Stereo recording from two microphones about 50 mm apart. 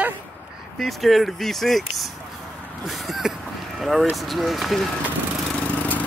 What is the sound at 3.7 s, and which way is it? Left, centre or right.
Vehicle, centre.